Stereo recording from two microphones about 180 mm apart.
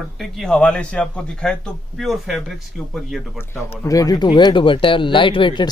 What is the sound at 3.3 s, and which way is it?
Speech, 15° left (ahead or behind).